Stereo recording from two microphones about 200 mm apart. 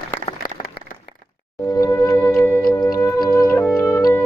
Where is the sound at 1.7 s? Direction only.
15° left (ahead or behind).